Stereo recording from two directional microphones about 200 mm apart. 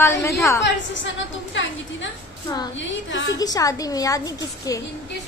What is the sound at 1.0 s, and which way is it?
Speech, 65° left (ahead or behind).